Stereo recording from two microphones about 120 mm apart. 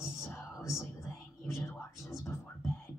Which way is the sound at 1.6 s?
25° left (ahead or behind).